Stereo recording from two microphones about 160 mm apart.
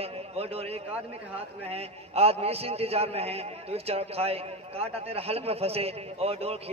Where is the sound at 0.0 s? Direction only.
40° right (ahead or behind).